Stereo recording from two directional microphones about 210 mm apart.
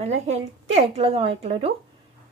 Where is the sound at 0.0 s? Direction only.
30° right (ahead or behind).